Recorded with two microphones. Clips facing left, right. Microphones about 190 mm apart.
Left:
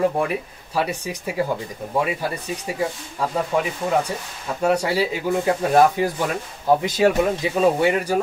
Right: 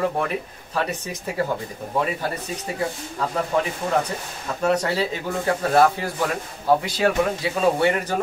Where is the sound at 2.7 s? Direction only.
10° left (ahead or behind).